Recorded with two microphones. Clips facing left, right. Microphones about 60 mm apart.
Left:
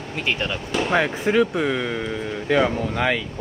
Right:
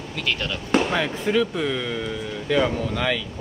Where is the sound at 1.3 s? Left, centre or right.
Left.